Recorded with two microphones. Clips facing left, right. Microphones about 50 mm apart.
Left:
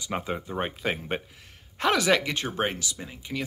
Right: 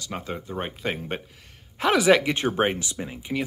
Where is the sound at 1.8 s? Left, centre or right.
Centre.